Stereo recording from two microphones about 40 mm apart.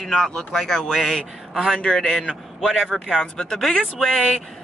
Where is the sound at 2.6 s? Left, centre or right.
Centre.